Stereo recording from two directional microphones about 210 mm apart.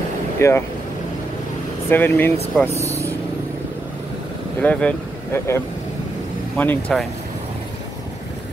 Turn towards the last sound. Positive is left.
turn(degrees=5)  # may be behind; listen again after turning